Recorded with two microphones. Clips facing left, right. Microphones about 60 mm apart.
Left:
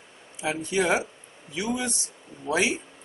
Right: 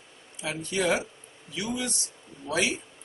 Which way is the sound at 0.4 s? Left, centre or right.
Left.